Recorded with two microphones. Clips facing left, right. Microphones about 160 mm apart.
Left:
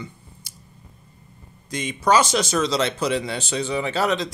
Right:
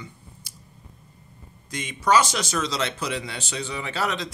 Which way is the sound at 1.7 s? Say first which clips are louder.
Left 2 dB; 25° left (ahead or behind).